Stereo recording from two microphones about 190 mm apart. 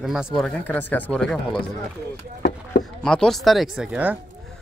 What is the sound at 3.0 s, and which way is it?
Speech, 5° left (ahead or behind).